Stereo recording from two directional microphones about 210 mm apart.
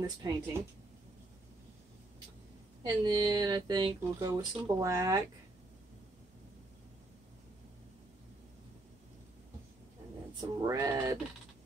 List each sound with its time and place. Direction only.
0.0 s speech: 15° right (ahead or behind)
2.8 s speech: 20° right (ahead or behind)
10.6 s speech: 15° right (ahead or behind)